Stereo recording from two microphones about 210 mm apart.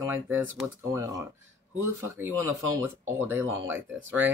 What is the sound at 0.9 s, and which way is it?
Speech, 15° right (ahead or behind).